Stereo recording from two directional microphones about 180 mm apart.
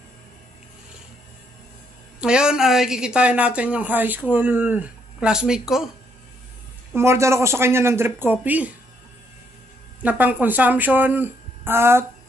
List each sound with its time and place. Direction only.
2.1 s speech: 5° right (ahead or behind)
7.0 s speech: 15° right (ahead or behind)
10.0 s speech: 10° right (ahead or behind)